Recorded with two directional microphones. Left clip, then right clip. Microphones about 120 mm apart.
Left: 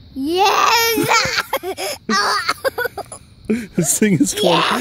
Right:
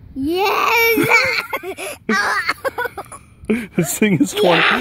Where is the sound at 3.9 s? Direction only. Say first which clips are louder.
Left 1 dB; 20° left (ahead or behind).